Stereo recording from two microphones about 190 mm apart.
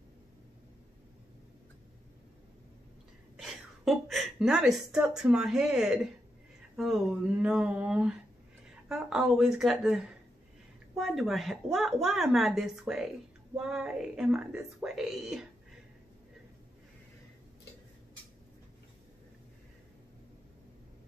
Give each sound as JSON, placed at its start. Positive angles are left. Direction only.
{"t": 3.3, "sound": "a woman's voice", "side_deg": 0}